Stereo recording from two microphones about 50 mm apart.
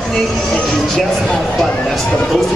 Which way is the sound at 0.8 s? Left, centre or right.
Centre.